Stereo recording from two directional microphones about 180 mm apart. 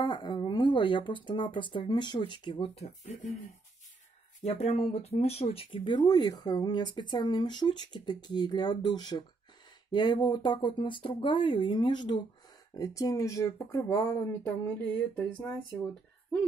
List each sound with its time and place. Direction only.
0.0 s speech: 25° left (ahead or behind)
4.5 s speech: 35° left (ahead or behind); by 15.5 s 5° left (ahead or behind)